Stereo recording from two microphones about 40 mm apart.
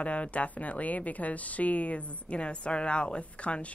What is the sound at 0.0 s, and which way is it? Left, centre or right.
A woman's voice, left.